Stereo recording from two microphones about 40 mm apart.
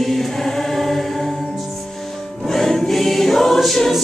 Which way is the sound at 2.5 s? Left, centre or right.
Centre.